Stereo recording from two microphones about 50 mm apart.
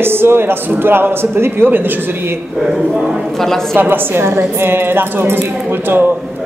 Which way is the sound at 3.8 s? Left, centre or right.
Right.